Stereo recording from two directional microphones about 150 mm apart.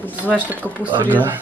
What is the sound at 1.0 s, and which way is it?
Speech, 10° right (ahead or behind).